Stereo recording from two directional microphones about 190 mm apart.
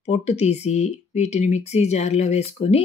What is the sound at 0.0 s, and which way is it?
Speech, 35° left (ahead or behind).